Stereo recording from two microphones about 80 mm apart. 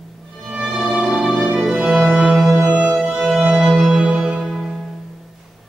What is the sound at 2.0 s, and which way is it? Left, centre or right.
Organ, centre.